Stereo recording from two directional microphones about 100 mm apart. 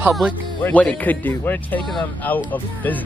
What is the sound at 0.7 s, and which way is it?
Speech, 15° left (ahead or behind).